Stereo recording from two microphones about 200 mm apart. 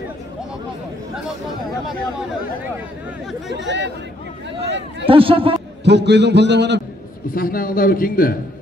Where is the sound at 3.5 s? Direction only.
65° right (ahead or behind).